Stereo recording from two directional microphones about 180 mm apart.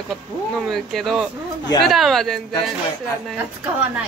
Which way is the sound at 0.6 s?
Centre (ahead or behind).